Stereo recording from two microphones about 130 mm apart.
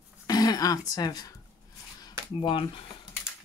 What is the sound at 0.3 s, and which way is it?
Speech, 30° left (ahead or behind).